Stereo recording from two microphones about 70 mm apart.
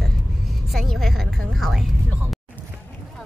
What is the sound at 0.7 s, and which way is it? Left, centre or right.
A woman's voice, centre.